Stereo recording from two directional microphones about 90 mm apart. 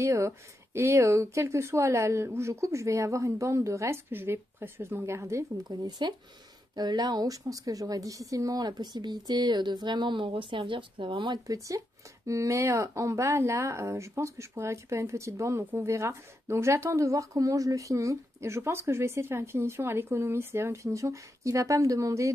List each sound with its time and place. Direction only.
0.0 s speech: 35° right (ahead or behind)
5.7 s a woman's voice: 55° right (ahead or behind)
11.4 s speech: 40° right (ahead or behind)